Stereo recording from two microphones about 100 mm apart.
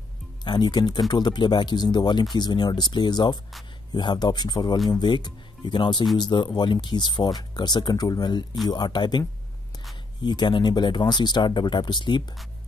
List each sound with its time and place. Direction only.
0.4 s speech: 45° left (ahead or behind)
10.2 s speech: 50° left (ahead or behind)